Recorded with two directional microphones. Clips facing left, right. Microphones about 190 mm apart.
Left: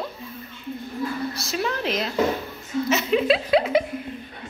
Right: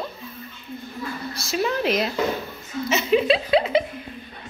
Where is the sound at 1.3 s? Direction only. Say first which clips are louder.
Right 3 dB; 10° right (ahead or behind).